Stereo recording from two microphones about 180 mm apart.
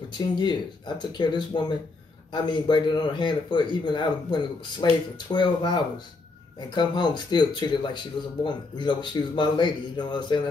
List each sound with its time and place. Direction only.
0.4 s speech: 25° left (ahead or behind)